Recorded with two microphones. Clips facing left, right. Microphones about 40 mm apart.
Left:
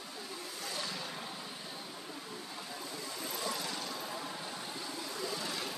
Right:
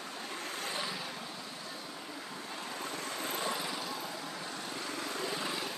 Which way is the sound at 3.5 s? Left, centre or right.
Centre.